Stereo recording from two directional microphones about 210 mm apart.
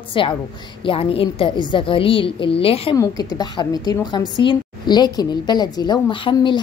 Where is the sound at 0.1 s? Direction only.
25° left (ahead or behind).